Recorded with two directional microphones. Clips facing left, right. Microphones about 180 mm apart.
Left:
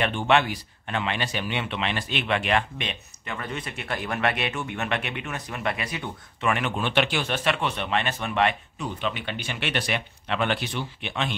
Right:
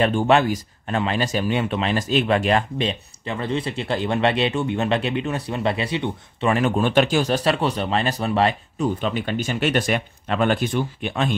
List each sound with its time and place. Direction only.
0.0 s speech: 40° right (ahead or behind)